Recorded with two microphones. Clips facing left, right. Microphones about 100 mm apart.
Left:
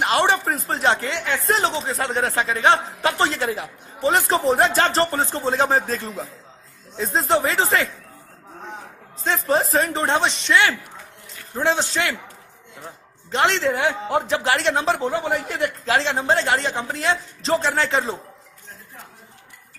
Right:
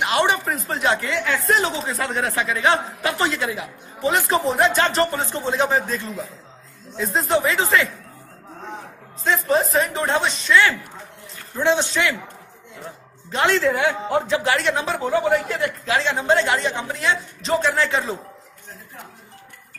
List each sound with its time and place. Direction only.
0.0 s a sound: 35° left (ahead or behind)
0.7 s a man's voice: 30° left (ahead or behind)
9.5 s speech: 35° left (ahead or behind)
11.5 s speech: 35° left (ahead or behind)
13.3 s a man's voice: 30° left (ahead or behind)